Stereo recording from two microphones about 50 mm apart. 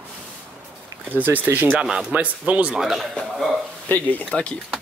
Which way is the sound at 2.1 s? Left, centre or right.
Right.